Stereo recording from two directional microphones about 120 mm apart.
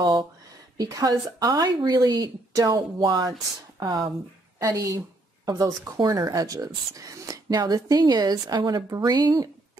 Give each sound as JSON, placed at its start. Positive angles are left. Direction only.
{"t": 0.0, "sound": "speech", "side_deg": -40}